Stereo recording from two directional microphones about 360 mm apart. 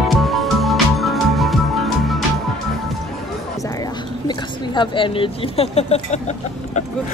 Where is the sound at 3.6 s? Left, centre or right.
Centre.